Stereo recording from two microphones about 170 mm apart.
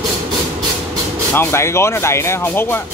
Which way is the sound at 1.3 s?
15° left (ahead or behind).